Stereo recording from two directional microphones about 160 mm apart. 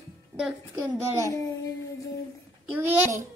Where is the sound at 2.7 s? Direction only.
10° right (ahead or behind).